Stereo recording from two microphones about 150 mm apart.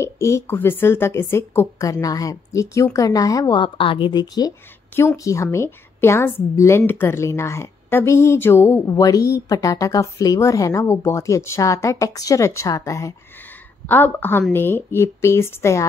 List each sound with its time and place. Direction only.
0.0 s a woman's voice: 20° left (ahead or behind)